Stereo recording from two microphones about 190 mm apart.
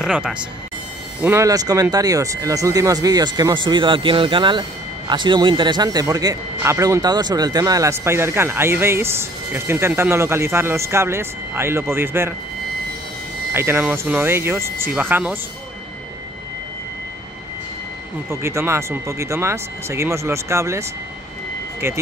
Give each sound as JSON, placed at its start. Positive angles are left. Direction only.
{"t": 0.0, "sound": "speech", "side_deg": -5}
{"t": 1.2, "sound": "speech", "side_deg": -15}
{"t": 13.5, "sound": "speech", "side_deg": -10}
{"t": 18.3, "sound": "speech", "side_deg": -15}
{"t": 21.8, "sound": "speech", "side_deg": -15}